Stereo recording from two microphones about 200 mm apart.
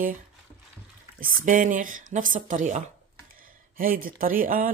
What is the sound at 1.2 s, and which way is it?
Speech, 45° right (ahead or behind).